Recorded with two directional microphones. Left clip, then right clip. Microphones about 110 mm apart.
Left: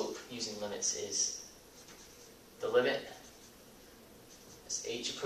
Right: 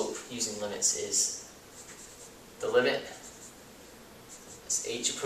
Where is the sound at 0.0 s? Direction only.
5° right (ahead or behind).